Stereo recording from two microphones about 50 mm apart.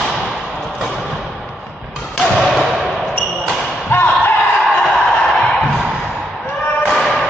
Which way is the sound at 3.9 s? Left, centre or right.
Left.